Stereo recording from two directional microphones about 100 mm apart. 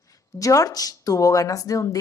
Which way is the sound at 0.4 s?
35° left (ahead or behind).